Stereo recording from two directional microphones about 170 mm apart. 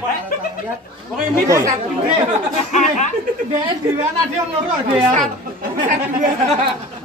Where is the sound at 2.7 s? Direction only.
45° left (ahead or behind).